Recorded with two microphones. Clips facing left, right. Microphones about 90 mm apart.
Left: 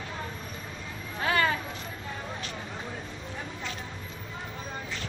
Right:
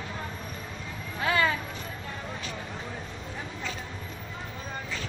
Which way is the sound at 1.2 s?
35° left (ahead or behind).